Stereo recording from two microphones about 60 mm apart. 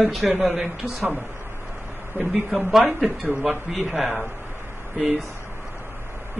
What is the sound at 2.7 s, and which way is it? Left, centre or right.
A man's voice, centre.